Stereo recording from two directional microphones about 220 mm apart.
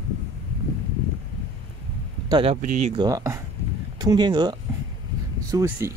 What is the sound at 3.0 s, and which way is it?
Speech, 15° right (ahead or behind).